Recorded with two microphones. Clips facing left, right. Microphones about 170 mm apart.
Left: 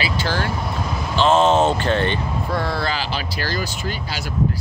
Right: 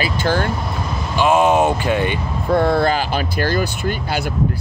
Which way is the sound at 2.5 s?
55° right (ahead or behind).